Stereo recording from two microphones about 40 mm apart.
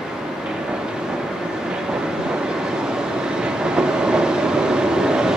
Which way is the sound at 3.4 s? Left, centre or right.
Right.